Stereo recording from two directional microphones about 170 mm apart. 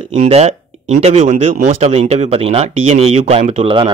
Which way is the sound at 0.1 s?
40° right (ahead or behind).